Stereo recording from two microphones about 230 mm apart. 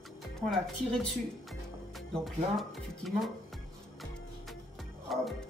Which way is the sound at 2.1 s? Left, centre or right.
Centre.